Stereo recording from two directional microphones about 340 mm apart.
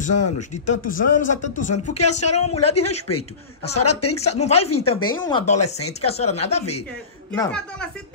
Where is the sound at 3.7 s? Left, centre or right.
Left.